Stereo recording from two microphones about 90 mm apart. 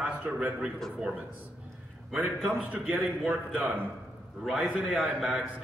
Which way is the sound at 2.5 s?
15° right (ahead or behind).